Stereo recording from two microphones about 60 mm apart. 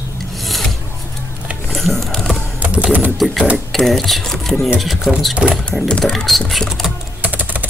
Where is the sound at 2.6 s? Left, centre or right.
Right.